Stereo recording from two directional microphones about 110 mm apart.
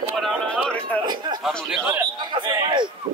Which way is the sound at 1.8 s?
20° right (ahead or behind).